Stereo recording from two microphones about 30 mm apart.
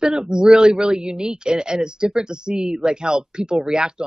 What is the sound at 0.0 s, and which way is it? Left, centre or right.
Speech, right.